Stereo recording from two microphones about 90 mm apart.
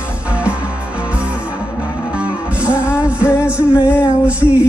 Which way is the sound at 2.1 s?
15° right (ahead or behind).